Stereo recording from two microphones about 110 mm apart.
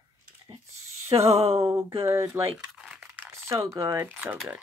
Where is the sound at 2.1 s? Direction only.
25° right (ahead or behind).